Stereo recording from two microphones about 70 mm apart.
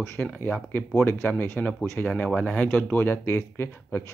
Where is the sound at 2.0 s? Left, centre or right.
Centre.